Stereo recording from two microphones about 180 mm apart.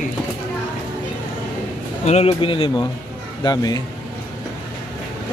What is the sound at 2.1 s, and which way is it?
Speech, 35° left (ahead or behind).